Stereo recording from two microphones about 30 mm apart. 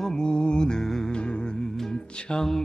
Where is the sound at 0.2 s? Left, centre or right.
Left.